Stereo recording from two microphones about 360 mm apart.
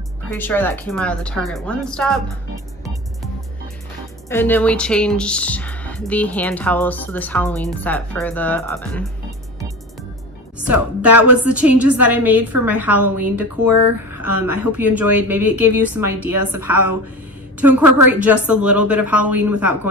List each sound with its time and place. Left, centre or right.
0.4 s a woman's voice: centre
4.3 s a woman's voice: centre
10.7 s a woman's voice: centre
13.7 s speech: right
14.2 s a woman's voice: centre
17.6 s a woman's voice: centre